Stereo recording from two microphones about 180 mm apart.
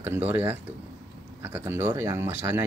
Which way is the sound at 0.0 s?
10° right (ahead or behind).